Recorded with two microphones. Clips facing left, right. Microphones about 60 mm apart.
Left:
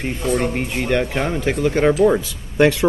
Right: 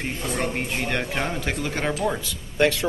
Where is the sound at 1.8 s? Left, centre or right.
Left.